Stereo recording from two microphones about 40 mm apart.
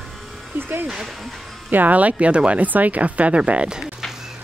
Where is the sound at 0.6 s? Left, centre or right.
Right.